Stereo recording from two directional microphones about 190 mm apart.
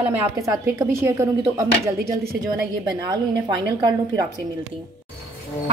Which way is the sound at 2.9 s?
20° right (ahead or behind).